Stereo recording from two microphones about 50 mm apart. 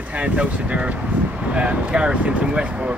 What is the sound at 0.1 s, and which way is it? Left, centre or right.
Speech, right.